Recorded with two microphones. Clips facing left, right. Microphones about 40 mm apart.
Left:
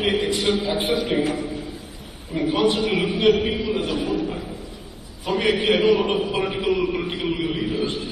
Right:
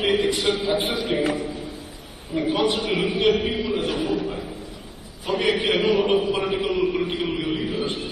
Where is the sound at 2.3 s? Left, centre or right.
Right.